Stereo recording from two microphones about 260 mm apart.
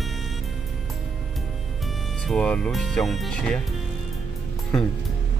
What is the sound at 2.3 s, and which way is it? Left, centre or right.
Speech, centre.